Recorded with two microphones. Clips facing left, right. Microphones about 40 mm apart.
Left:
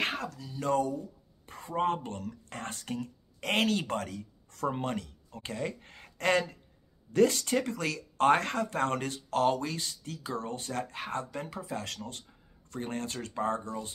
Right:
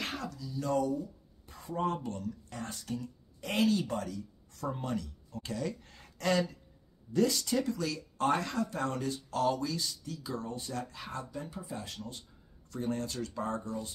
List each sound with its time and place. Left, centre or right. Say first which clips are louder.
0.0 s speech: left 5 dB; left
12.7 s speech: right 1 dB; left